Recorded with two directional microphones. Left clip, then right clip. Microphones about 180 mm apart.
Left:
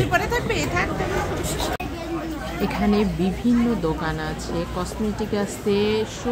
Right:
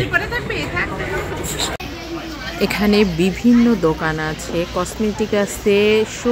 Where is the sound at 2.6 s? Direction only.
25° right (ahead or behind).